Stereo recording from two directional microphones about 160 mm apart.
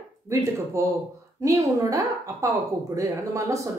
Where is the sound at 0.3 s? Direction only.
20° right (ahead or behind).